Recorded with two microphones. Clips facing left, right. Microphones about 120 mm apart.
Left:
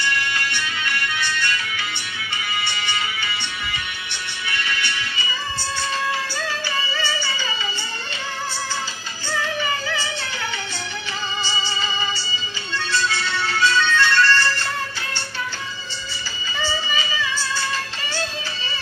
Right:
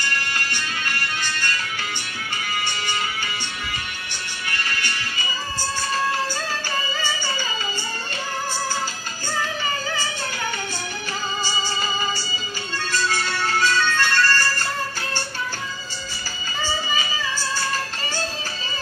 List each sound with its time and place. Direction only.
0.0 s music: 45° right (ahead or behind)
12.7 s music: 45° right (ahead or behind)